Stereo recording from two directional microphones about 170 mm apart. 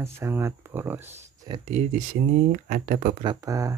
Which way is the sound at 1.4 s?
30° right (ahead or behind).